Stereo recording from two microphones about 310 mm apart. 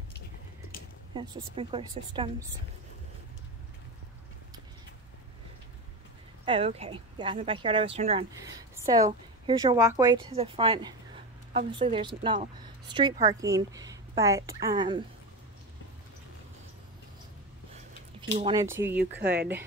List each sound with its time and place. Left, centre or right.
1.1 s a woman's voice: centre
6.4 s a woman's voice: centre
18.4 s a woman's voice: centre
18.9 s speech: right